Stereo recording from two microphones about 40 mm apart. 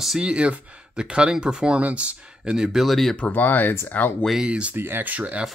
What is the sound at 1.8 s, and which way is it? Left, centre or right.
Speech, right.